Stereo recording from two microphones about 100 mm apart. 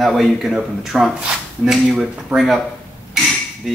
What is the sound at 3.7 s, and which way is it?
Music, centre (ahead or behind).